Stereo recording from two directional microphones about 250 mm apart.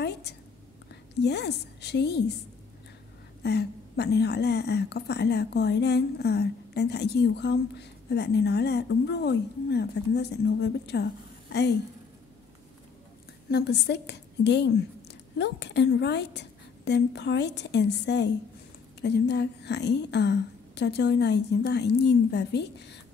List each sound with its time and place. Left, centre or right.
0.0 s a sound: left
1.2 s a woman's voice: left
3.4 s a woman's voice: left
13.5 s a woman's voice: left